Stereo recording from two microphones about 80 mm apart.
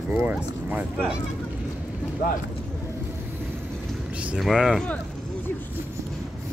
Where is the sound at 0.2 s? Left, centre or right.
Right.